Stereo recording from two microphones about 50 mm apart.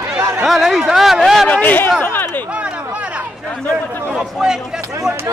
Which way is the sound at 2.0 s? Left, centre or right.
Left.